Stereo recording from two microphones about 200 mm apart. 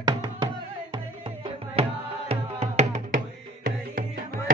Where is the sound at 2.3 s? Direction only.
35° right (ahead or behind).